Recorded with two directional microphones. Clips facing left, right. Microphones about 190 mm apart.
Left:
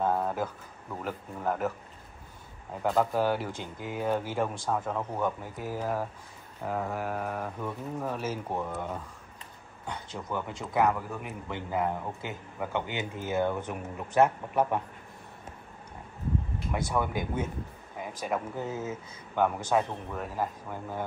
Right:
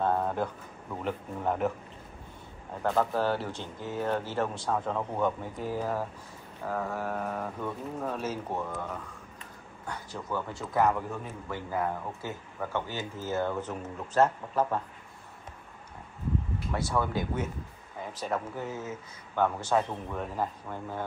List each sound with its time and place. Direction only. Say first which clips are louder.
0.0 s a sound: even; 5° left (ahead or behind)
1.0 s speech: right 1 dB; centre (ahead or behind)
2.8 s speech: left 1 dB; 10° left (ahead or behind)
9.8 s speech: even; 20° left (ahead or behind); by 11.1 s centre (ahead or behind)
11.2 s speech: left 1 dB; 20° left (ahead or behind)
16.7 s speech: even; 15° left (ahead or behind)